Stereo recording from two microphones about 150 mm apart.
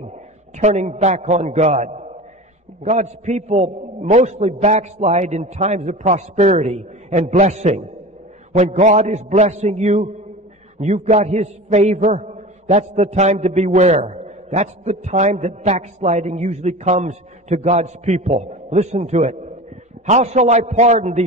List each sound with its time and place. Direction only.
0.6 s a man's voice: 50° right (ahead or behind)